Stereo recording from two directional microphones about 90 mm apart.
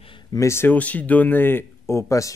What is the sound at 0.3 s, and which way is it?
Speech, 35° left (ahead or behind).